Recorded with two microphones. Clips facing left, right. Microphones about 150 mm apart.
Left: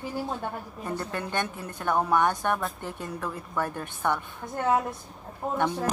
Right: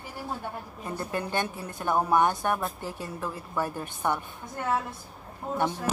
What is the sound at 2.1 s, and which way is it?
Music, 25° right (ahead or behind).